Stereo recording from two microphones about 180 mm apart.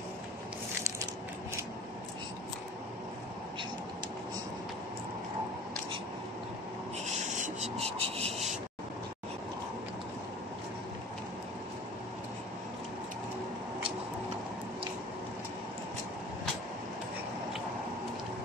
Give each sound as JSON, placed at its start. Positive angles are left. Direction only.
{"t": 7.1, "sound": "rub", "side_deg": -40}